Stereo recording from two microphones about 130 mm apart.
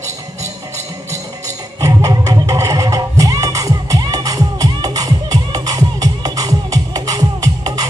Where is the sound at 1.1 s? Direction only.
25° right (ahead or behind).